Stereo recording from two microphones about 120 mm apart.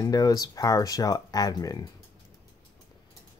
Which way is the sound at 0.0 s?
30° left (ahead or behind).